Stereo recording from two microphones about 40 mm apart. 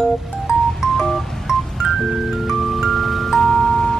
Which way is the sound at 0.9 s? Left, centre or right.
Centre.